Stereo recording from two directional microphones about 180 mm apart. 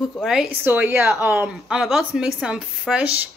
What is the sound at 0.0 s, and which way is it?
Speech, centre (ahead or behind).